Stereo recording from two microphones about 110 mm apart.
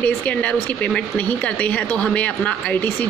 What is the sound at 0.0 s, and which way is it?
A woman's voice, 15° left (ahead or behind).